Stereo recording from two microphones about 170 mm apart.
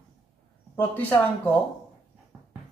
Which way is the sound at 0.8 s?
10° left (ahead or behind).